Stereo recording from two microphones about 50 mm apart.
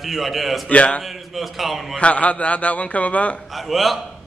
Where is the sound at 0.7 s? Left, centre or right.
Left.